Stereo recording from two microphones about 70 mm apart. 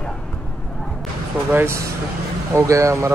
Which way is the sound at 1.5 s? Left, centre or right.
Right.